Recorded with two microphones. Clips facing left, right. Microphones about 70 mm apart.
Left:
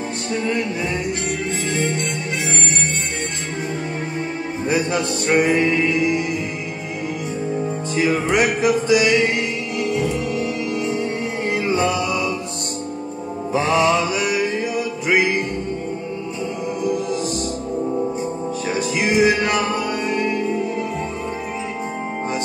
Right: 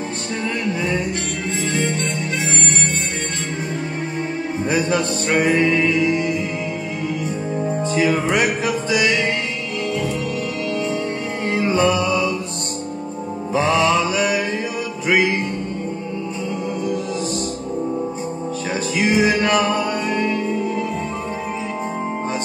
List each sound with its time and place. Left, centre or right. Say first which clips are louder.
4.6 s music: even; right
7.9 s music: even; right
8.6 s music: left 3 dB; left
11.8 s music: right 3 dB; left
13.5 s music: even; left
14.1 s music: right 2 dB; right
18.9 s music: even; left